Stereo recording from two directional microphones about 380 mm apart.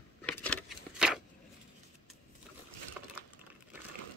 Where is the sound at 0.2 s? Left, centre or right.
Centre.